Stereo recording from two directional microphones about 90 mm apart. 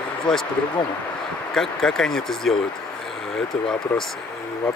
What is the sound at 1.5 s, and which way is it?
Speech, 5° left (ahead or behind).